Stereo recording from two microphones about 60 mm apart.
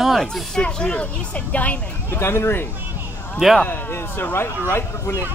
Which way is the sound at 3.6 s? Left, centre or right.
Left.